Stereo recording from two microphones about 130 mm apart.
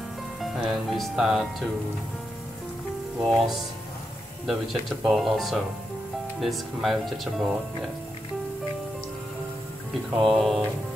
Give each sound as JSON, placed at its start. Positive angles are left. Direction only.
{"t": 0.4, "sound": "speech", "side_deg": 0}
{"t": 3.2, "sound": "speech", "side_deg": 0}
{"t": 10.1, "sound": "speech", "side_deg": 0}